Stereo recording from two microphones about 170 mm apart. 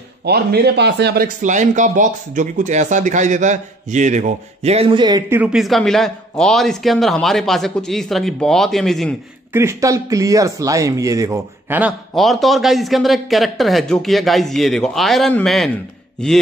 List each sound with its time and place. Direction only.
0.2 s speech: 70° right (ahead or behind); by 5.2 s 25° right (ahead or behind)
5.3 s a man's voice: 5° right (ahead or behind)
9.5 s speech: 15° right (ahead or behind)
12.2 s a man's voice: centre (ahead or behind)